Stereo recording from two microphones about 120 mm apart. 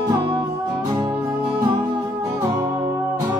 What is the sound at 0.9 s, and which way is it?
Music, 40° right (ahead or behind).